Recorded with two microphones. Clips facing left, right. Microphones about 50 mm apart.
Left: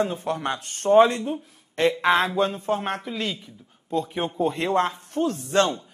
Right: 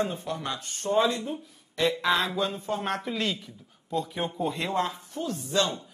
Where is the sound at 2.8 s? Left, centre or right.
Left.